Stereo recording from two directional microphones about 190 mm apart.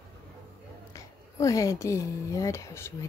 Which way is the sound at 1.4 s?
15° left (ahead or behind).